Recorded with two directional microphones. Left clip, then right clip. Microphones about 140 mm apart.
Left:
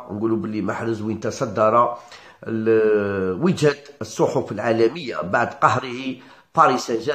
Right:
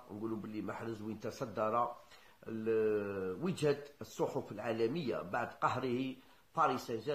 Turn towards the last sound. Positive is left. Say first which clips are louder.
# left 16 dB
turn(degrees=-5)  # may be behind; listen again after turning